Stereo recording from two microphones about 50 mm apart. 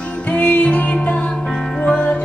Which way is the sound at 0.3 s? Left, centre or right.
Left.